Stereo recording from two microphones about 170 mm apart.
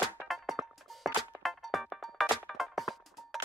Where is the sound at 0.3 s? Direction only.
Centre (ahead or behind).